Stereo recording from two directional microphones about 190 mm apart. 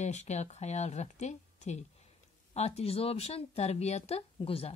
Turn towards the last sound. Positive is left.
turn(degrees=30)  # may be behind; listen again after turning